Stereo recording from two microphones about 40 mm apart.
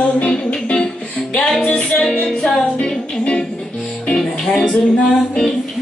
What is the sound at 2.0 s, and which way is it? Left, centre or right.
Music, centre.